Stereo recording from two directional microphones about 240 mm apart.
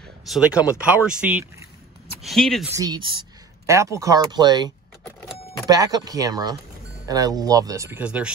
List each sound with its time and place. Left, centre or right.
0.3 s speech: centre
2.7 s speech: centre